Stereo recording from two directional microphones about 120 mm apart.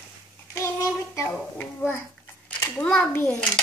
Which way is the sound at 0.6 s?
25° left (ahead or behind).